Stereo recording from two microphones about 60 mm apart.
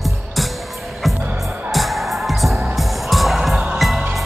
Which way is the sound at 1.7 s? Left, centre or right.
Centre.